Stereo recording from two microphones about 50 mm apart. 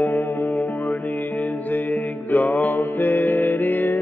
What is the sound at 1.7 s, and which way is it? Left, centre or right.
Music, left.